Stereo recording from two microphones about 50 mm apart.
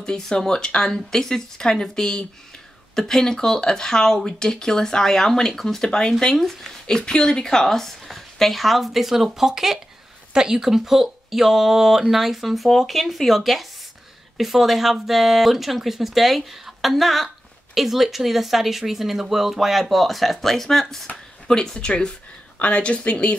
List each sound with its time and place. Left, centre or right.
0.0 s speech: centre
21.1 s a woman's voice: left
21.5 s a woman's voice: centre